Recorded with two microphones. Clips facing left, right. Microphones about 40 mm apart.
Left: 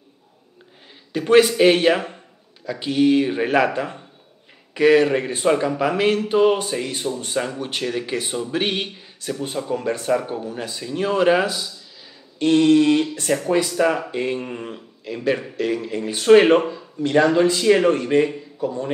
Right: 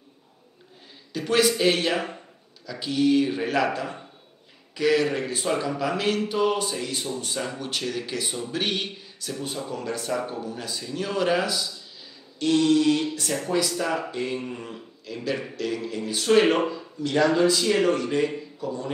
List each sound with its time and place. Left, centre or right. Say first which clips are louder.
1.1 s a man's voice: left 7 dB; left